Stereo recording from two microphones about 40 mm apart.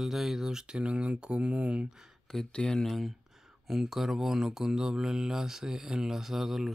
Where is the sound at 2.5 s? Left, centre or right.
Left.